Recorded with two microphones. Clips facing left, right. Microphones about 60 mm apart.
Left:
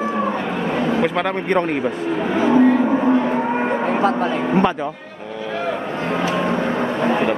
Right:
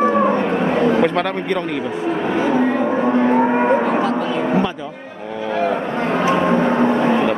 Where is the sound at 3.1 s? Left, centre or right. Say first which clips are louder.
Right 2 dB; centre.